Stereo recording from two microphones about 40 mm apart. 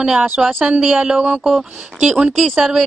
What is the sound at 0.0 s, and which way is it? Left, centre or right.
Speech, centre.